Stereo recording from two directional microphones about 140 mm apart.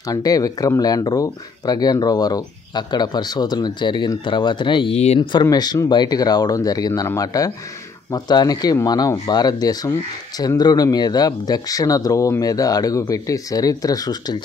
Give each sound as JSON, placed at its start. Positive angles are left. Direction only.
{"t": 0.0, "sound": "speech", "side_deg": 25}
{"t": 4.9, "sound": "speech", "side_deg": 50}
{"t": 5.3, "sound": "speech", "side_deg": 30}